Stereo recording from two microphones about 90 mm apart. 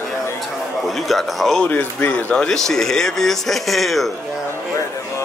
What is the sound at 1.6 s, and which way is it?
Speech, 20° left (ahead or behind).